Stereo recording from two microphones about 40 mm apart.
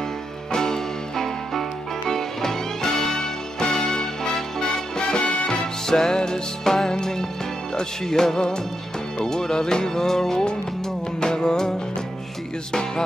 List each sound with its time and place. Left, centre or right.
0.5 s music: centre